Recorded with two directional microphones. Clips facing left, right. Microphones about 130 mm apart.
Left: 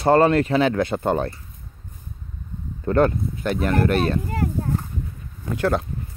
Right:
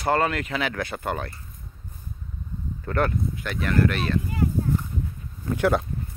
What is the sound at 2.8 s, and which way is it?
Speech, 25° left (ahead or behind).